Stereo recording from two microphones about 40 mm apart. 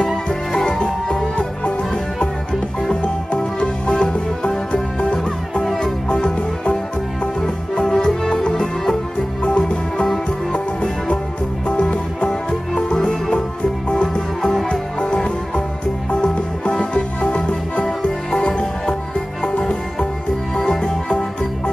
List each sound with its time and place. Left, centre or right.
0.3 s music: centre
3.5 s music: left
5.6 s music: centre
6.0 s music: left
7.8 s music: centre
9.4 s music: left
12.3 s music: centre
14.7 s music: left